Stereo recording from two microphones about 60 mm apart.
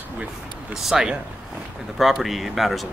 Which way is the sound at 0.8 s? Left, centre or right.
Centre.